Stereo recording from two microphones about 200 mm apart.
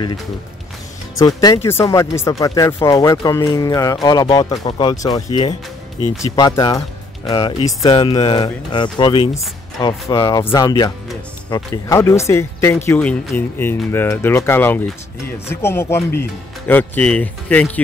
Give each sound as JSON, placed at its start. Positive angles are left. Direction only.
{"t": 1.1, "sound": "speech", "side_deg": 20}